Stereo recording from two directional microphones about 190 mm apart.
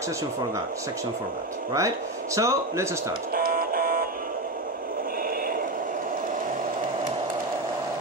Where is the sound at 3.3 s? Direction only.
50° right (ahead or behind).